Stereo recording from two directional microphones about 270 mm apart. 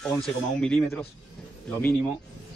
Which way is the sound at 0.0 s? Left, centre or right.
Centre.